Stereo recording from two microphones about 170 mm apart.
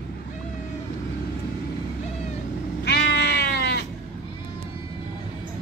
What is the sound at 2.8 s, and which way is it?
Goat, 75° left (ahead or behind).